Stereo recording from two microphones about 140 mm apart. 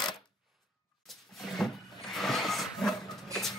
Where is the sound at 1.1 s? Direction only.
Centre (ahead or behind).